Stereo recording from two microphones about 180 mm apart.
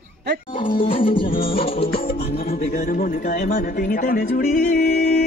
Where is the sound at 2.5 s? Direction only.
40° left (ahead or behind).